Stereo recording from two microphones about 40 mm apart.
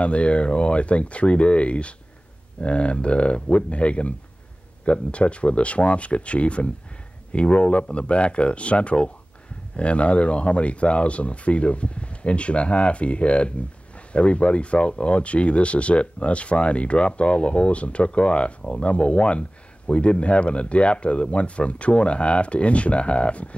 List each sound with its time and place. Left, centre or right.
0.0 s speech: left